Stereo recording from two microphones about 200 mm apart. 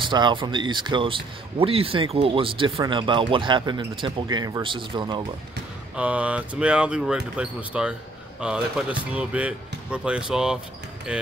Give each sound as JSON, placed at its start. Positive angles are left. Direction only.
{"t": 0.0, "sound": "speech", "side_deg": -25}
{"t": 5.9, "sound": "speech", "side_deg": -5}